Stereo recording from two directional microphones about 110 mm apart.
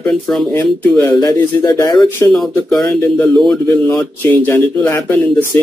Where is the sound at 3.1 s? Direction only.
10° left (ahead or behind).